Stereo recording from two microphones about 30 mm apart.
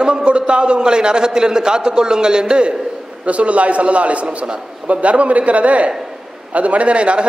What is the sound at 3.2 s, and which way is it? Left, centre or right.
A man's voice, right.